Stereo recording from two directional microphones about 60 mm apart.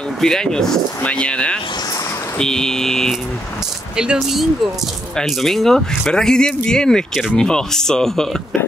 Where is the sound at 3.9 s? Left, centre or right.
Centre.